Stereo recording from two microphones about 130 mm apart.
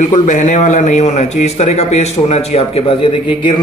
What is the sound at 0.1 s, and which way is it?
A man's voice, 65° left (ahead or behind).